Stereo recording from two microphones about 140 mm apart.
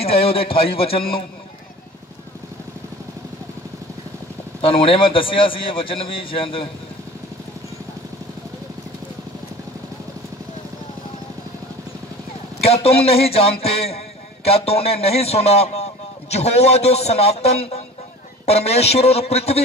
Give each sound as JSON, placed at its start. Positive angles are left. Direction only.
{"t": 0.0, "sound": "a man's voice", "side_deg": 45}
{"t": 4.6, "sound": "a man's voice", "side_deg": 40}
{"t": 12.6, "sound": "a man's voice", "side_deg": 45}